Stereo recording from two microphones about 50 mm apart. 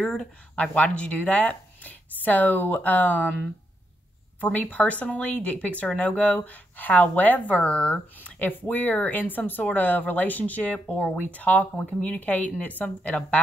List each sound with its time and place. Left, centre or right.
0.0 s speech: centre; by 3.3 s left
4.4 s speech: left
8.4 s speech: left